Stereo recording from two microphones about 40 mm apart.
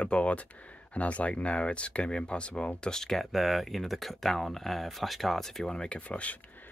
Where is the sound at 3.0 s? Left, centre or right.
Centre.